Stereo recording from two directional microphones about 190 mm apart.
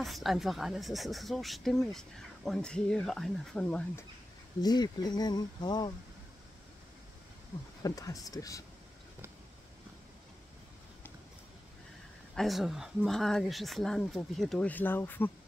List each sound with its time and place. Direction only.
0.0 s speech: centre (ahead or behind)
4.6 s speech: 20° left (ahead or behind)
7.8 s speech: 20° left (ahead or behind)
12.4 s speech: centre (ahead or behind)